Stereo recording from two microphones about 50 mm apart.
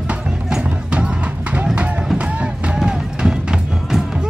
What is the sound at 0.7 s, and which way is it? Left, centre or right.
Music, right.